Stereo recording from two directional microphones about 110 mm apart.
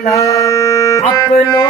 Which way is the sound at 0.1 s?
30° left (ahead or behind).